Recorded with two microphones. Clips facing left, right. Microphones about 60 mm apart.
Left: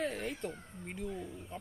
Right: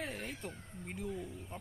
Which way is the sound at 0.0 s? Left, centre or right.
Centre.